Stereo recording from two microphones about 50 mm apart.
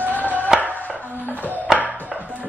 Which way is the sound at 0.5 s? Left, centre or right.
Centre.